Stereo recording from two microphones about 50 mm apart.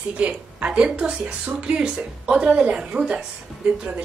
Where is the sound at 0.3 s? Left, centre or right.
Right.